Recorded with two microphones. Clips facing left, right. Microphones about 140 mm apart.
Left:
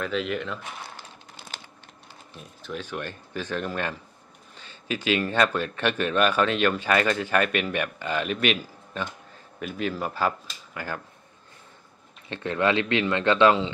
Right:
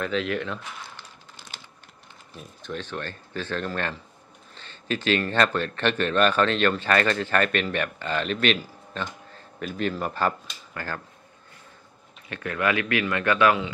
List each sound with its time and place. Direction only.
0.0 s speech: centre (ahead or behind)
2.3 s speech: 5° left (ahead or behind)
12.3 s speech: 25° left (ahead or behind)